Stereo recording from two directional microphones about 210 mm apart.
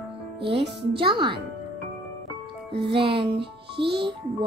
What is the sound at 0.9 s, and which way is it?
Music, 25° right (ahead or behind).